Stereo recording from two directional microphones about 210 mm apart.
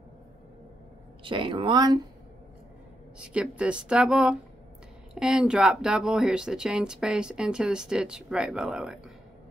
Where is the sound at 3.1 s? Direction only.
5° right (ahead or behind).